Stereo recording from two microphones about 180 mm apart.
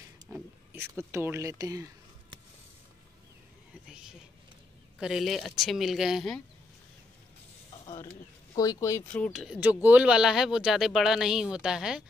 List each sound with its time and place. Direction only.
0.3 s speech: 15° right (ahead or behind)
5.0 s speech: centre (ahead or behind)
8.5 s speech: 20° left (ahead or behind)
9.1 s speech: 5° left (ahead or behind)